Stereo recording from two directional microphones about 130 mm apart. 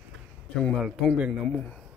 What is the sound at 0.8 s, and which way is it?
Speech, 5° right (ahead or behind).